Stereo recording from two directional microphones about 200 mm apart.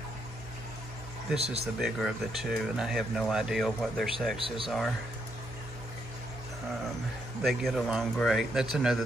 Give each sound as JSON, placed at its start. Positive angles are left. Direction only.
{"t": 1.4, "sound": "speech", "side_deg": -30}
{"t": 1.8, "sound": "speech", "side_deg": 0}
{"t": 7.4, "sound": "speech", "side_deg": 0}